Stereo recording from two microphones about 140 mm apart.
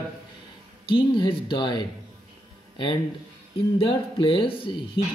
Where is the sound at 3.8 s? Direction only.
35° left (ahead or behind).